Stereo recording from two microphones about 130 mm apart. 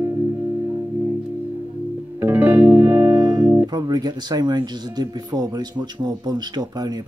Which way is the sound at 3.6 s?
35° right (ahead or behind).